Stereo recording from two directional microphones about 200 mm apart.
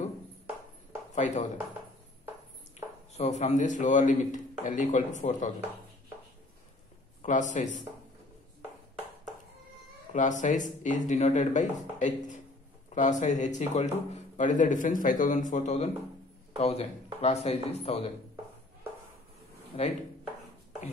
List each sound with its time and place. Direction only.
1.1 s speech: 35° left (ahead or behind)
3.2 s speech: 35° left (ahead or behind)
7.2 s speech: 40° left (ahead or behind)
10.1 s speech: 40° left (ahead or behind)
19.7 s speech: 30° left (ahead or behind)